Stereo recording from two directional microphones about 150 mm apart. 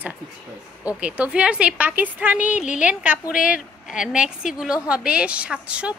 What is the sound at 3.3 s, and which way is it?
Speech, 70° left (ahead or behind).